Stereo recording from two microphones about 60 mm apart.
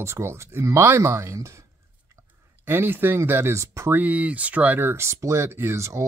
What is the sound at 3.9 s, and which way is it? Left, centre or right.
Speech, right.